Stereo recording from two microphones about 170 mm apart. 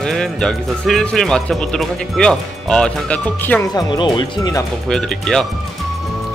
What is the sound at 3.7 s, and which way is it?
Speech, 25° left (ahead or behind).